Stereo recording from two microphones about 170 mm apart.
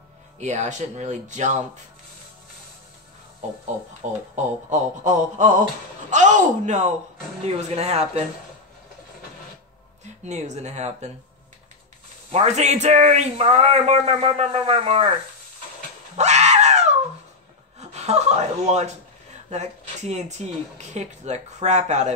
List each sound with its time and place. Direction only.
0.4 s speech: 45° right (ahead or behind)
4.0 s speech: 45° right (ahead or behind)
10.2 s speech: 45° right (ahead or behind)
12.3 s speech: 40° right (ahead or behind)
16.2 s screaming: 40° right (ahead or behind)
17.7 s speech: 40° right (ahead or behind)